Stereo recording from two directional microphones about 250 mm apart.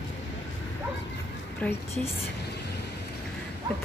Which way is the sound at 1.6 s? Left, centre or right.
Centre.